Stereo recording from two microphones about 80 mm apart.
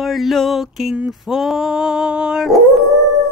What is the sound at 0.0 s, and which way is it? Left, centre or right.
Dog, centre.